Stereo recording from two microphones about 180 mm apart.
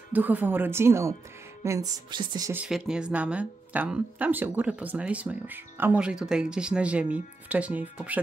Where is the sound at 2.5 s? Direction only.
5° right (ahead or behind).